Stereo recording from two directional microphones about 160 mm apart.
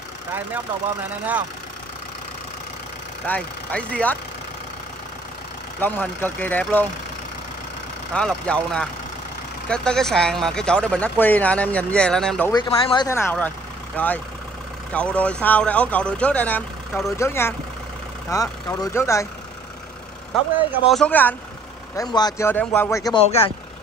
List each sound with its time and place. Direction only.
3.3 s speech: 10° left (ahead or behind)
5.8 s speech: 10° left (ahead or behind)
8.1 s speech: 5° left (ahead or behind)
12.5 s speech: 30° left (ahead or behind)
13.1 s speech: 15° left (ahead or behind)
20.9 s speech: 10° left (ahead or behind)
21.9 s speech: 25° left (ahead or behind)
22.5 s speech: 10° left (ahead or behind)
23.1 s speech: 35° left (ahead or behind)